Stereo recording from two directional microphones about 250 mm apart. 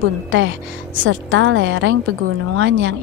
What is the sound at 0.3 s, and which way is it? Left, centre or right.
A woman's voice, right.